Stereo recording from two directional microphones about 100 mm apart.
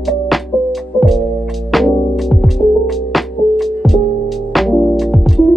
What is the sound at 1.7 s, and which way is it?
Music, centre (ahead or behind).